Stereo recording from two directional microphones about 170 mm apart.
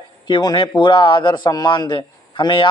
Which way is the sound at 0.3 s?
25° left (ahead or behind).